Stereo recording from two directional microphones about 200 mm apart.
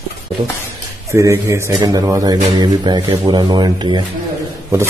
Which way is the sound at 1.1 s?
15° right (ahead or behind).